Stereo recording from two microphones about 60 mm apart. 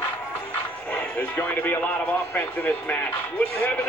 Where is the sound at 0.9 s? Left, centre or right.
Left.